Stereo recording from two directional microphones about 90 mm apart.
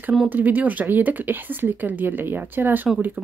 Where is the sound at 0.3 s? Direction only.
20° right (ahead or behind).